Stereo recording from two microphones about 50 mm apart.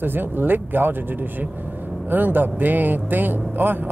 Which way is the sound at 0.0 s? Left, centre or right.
Right.